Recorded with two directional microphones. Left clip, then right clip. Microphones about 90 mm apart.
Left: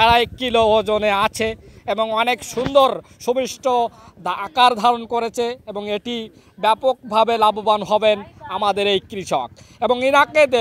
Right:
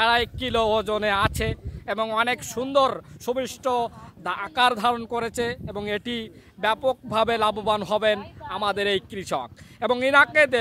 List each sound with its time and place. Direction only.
0.0 s speech: 70° left (ahead or behind)
2.1 s speech: 45° left (ahead or behind)
8.5 s speech: 50° left (ahead or behind)